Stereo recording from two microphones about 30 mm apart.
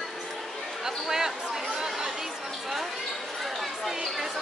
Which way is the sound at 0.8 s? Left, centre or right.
Centre.